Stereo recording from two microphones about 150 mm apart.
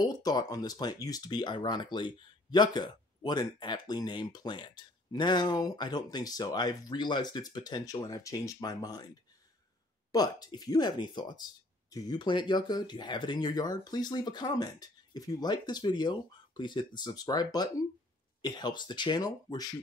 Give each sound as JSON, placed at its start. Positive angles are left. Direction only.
{"t": 0.0, "sound": "speech", "side_deg": 25}
{"t": 10.1, "sound": "speech", "side_deg": 25}